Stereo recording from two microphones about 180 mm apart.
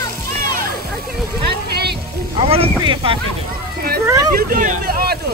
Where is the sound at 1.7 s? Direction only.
65° right (ahead or behind).